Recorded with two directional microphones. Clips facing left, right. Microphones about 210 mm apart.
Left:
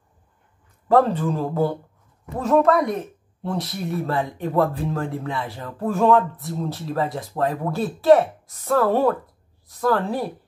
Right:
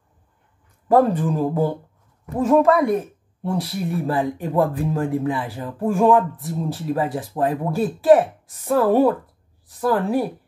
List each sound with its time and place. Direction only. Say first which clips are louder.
0.8 s speech: right 1 dB; 15° right (ahead or behind)